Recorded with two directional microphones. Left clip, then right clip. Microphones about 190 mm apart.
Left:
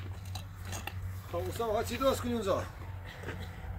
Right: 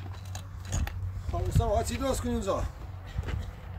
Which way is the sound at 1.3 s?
65° right (ahead or behind).